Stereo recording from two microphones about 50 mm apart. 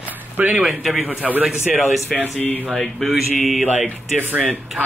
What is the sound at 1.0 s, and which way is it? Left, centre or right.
Speech, right.